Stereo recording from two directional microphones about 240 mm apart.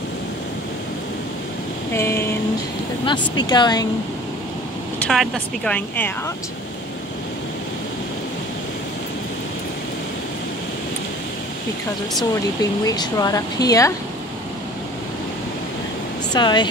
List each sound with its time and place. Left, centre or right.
1.9 s vehicle: centre
3.1 s speech: centre
4.9 s speech: centre
12.8 s speech: centre
16.3 s speech: centre